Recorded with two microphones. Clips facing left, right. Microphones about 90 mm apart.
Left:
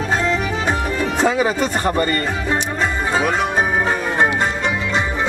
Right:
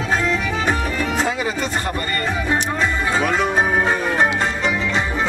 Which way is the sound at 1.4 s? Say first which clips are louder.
Left 5 dB; 35° left (ahead or behind).